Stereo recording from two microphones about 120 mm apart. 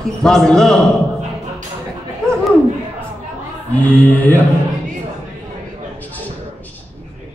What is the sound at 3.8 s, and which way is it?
Speech, 15° left (ahead or behind).